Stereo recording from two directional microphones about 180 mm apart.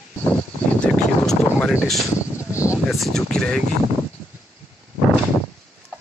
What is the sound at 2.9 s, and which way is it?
Speech, centre (ahead or behind).